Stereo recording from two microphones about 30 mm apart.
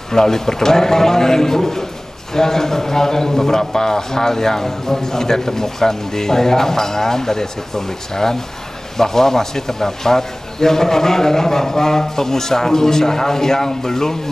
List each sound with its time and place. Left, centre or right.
0.1 s a man's voice: centre